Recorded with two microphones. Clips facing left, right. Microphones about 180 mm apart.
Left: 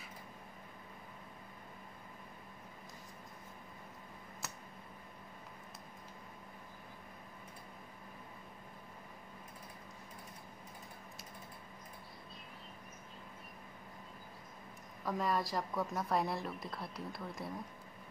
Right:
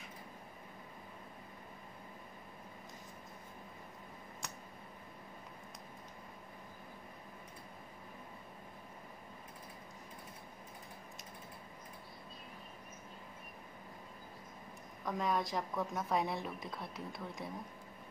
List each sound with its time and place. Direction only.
4.4 s tick: 5° left (ahead or behind)
15.0 s a woman's voice: centre (ahead or behind)